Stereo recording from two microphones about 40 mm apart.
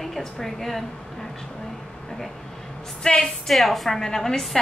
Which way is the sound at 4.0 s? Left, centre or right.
Centre.